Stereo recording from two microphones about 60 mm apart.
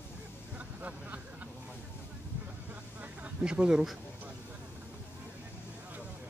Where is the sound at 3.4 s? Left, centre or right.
Centre.